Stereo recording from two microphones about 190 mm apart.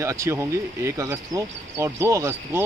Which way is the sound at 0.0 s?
15° right (ahead or behind).